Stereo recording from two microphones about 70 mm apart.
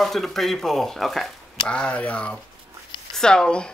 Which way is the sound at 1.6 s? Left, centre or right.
Centre.